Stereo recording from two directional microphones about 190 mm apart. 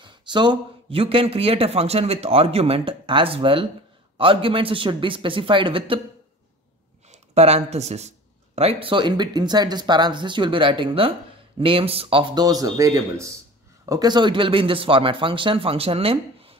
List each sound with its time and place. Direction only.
0.0 s a man's voice: 25° right (ahead or behind)
7.1 s speech: 35° right (ahead or behind)